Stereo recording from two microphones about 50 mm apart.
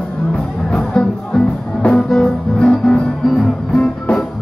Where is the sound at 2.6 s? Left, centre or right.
Left.